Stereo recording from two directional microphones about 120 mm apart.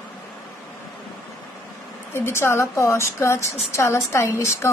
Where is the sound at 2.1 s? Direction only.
20° left (ahead or behind).